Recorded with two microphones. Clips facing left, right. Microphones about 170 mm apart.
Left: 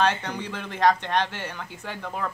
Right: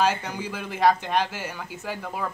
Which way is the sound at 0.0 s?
5° right (ahead or behind).